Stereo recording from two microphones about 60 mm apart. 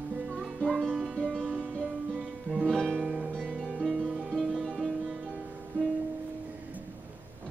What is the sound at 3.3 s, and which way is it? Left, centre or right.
Harp, centre.